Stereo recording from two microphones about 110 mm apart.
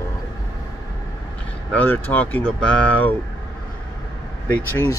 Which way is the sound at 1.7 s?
15° left (ahead or behind).